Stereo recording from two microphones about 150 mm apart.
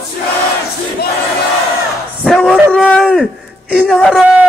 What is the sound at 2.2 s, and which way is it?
Speech, centre (ahead or behind).